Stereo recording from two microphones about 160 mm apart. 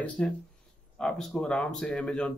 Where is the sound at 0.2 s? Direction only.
5° left (ahead or behind).